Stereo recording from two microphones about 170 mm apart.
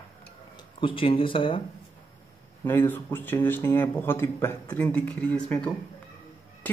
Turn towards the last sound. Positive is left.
turn(degrees=5)  # may be behind; listen again after turning